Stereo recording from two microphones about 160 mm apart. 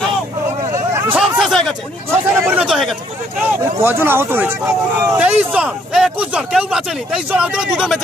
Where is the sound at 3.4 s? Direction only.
15° right (ahead or behind).